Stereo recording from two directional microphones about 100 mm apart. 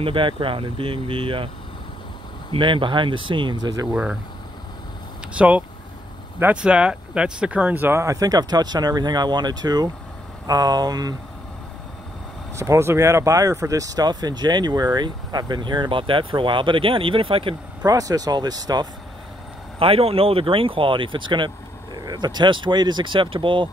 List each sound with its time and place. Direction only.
0.0 s speech: 60° right (ahead or behind)
2.5 s speech: 55° right (ahead or behind)
3.9 s speech: 10° right (ahead or behind)
5.4 s speech: 10° right (ahead or behind)
8.0 s speech: 35° right (ahead or behind)
12.5 s speech: 30° right (ahead or behind); by 17.6 s 65° right (ahead or behind)
17.8 s speech: 40° right (ahead or behind)
19.8 s speech: 75° right (ahead or behind)